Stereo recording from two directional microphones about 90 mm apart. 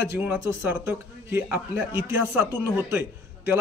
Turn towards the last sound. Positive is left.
turn(degrees=-25)  # may be behind; listen again after turning